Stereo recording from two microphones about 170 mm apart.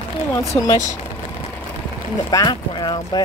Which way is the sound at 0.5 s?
20° left (ahead or behind).